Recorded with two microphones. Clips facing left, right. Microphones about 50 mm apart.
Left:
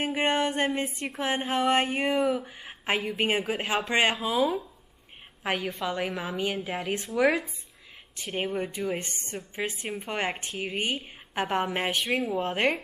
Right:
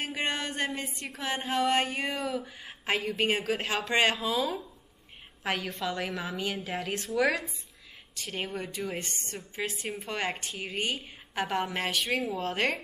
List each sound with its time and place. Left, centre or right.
0.0 s a sound: centre
0.7 s a woman's voice: left
12.0 s a woman's voice: centre
12.3 s a woman's voice: centre